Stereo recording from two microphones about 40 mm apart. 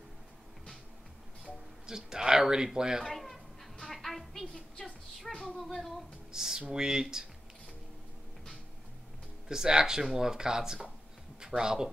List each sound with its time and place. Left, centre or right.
1.9 s speech: centre
3.1 s fowl: centre
3.8 s music: centre
5.3 s a sound: centre
5.6 s speech: centre
6.3 s a sound: centre
6.7 s speech: centre
9.5 s speech: centre